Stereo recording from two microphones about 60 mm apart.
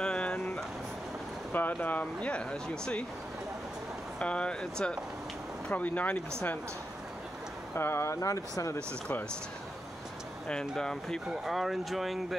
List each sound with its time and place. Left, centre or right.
0.0 s vehicle: centre
1.5 s speech: left; by 3.1 s centre
4.2 s speech: centre
5.7 s speech: left
7.7 s speech: left
8.2 s speech: left
10.8 s speech: centre
11.4 s speech: centre